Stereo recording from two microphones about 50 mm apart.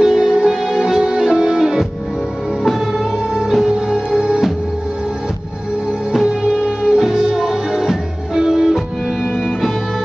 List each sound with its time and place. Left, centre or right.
0.0 s music: centre
6.1 s music: centre